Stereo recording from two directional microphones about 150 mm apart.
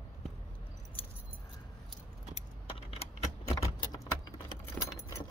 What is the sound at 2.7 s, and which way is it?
Keys jangling, 40° left (ahead or behind).